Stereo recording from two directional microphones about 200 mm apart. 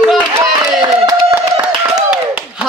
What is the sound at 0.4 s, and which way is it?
Clapping, 15° right (ahead or behind).